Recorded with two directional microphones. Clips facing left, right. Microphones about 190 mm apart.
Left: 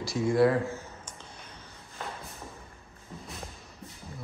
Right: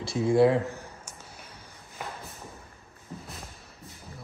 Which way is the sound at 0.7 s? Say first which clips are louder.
Even; 10° right (ahead or behind).